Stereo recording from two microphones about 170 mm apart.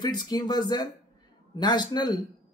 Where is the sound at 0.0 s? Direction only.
25° left (ahead or behind).